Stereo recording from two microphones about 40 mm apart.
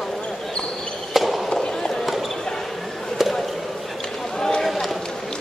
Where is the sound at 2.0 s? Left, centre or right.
Centre.